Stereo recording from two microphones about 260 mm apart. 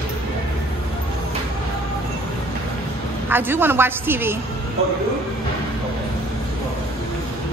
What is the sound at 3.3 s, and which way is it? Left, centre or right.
A woman's voice, centre.